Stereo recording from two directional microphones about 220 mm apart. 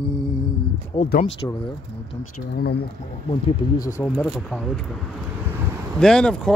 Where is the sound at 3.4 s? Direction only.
15° left (ahead or behind).